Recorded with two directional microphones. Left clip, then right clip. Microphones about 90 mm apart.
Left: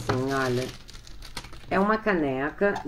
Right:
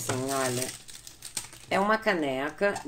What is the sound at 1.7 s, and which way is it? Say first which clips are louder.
Speech: left 1 dB; 35° right (ahead or behind).